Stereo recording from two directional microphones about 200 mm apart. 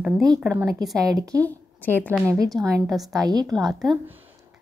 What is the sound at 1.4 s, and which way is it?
Speech, 10° left (ahead or behind).